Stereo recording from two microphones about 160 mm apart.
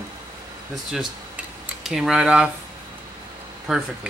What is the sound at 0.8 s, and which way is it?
Speech, 5° right (ahead or behind).